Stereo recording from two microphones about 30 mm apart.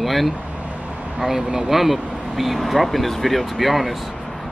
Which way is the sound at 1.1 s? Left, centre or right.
Right.